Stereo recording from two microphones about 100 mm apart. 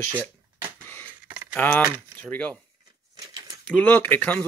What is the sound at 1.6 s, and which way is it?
Speech, 15° left (ahead or behind).